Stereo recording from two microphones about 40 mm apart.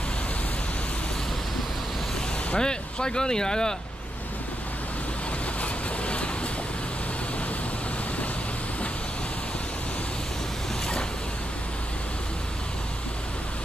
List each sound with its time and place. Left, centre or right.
2.5 s speech: centre
5.6 s vehicle: left